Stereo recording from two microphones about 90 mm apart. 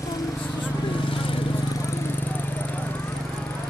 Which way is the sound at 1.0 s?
80° left.